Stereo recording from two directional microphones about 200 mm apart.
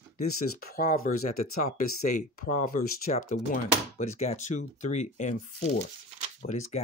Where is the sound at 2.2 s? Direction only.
40° left (ahead or behind).